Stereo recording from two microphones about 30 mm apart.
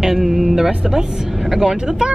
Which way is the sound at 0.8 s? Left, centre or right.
Centre.